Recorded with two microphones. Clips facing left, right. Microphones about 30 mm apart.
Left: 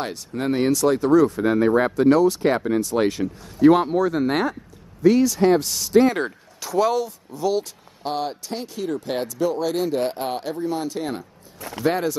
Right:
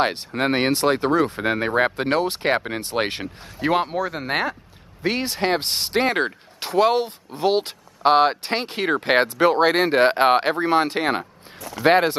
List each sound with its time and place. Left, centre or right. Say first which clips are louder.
0.0 s speech: right 5 dB; right
3.7 s speech: left 3 dB; right
5.0 s speech: left 6 dB; right